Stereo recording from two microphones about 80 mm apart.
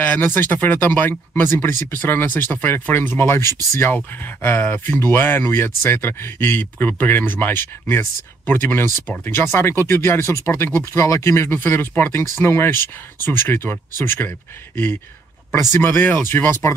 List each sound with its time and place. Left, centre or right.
0.0 s speech: left
15.7 s speech: left